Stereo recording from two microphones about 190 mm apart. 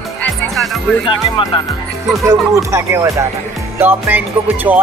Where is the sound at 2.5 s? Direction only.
15° right (ahead or behind).